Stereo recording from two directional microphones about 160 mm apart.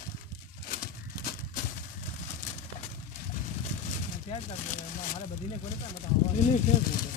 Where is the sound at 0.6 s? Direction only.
60° left (ahead or behind).